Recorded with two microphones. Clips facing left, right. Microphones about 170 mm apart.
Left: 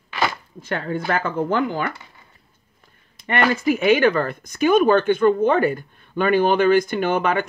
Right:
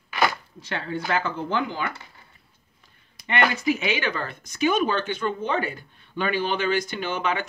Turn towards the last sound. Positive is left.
turn(degrees=55)  # may be behind; listen again after turning